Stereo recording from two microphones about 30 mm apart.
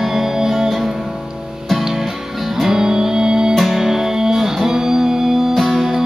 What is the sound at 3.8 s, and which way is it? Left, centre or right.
Music, centre.